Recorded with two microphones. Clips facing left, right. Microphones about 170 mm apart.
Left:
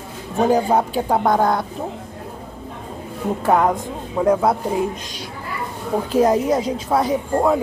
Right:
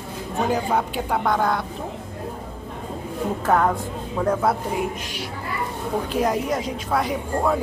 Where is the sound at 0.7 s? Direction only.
35° left (ahead or behind).